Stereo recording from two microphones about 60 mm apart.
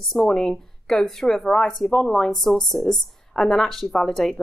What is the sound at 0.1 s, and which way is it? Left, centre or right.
A woman's voice, centre.